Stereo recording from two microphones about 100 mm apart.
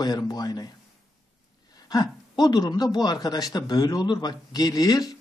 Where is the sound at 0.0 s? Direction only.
40° left (ahead or behind).